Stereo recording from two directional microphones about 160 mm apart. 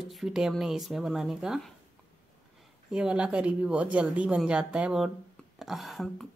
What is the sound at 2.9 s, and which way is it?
Speech, 5° right (ahead or behind).